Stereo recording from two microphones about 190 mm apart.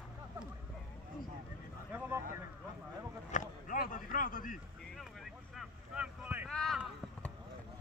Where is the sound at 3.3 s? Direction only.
45° left (ahead or behind).